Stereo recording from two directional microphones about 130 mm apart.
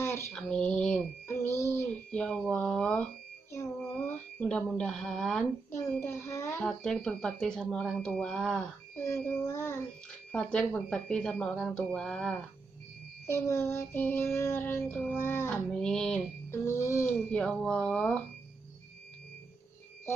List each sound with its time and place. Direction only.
0.0 s mantra: 20° left (ahead or behind)
0.3 s mantra: 5° left (ahead or behind)
1.2 s a sound: 20° left (ahead or behind)
2.1 s a sound: 5° left (ahead or behind)
4.4 s speech: 10° left (ahead or behind)
5.7 s a sound: 20° left (ahead or behind)
6.6 s speech: 5° left (ahead or behind)
9.0 s child singing: 15° left (ahead or behind)
10.3 s speech: 5° left (ahead or behind)
13.3 s child singing: 20° left (ahead or behind)
14.9 s speech: 15° left (ahead or behind)
15.5 s speech: 5° left (ahead or behind)
16.4 s child singing: 20° left (ahead or behind)
17.3 s speech: 5° left (ahead or behind)